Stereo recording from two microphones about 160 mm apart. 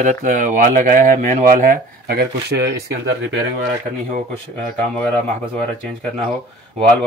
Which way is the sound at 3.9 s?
40° right (ahead or behind).